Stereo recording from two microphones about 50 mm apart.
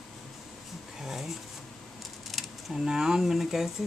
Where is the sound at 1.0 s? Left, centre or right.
Centre.